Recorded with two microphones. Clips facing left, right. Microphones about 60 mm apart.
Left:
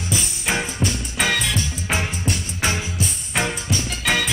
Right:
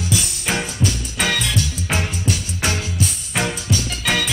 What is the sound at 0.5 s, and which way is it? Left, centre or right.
Music, centre.